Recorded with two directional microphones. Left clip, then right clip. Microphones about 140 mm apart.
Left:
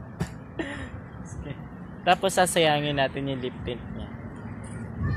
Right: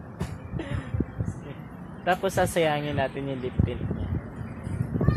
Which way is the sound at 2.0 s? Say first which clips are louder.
Left 3 dB; 10° left (ahead or behind).